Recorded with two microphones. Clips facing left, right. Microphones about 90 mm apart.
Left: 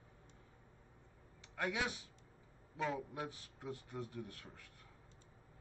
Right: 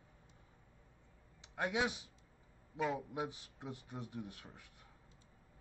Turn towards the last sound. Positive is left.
turn(degrees=-15)  # may be behind; listen again after turning